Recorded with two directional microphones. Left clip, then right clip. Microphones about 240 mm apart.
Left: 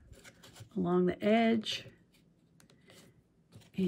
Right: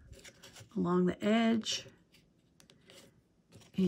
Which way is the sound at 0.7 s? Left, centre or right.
Centre.